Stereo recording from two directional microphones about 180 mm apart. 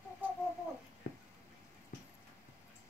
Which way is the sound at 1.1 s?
50° left (ahead or behind).